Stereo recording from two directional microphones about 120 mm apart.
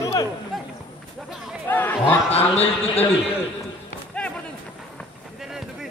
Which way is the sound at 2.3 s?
55° left (ahead or behind).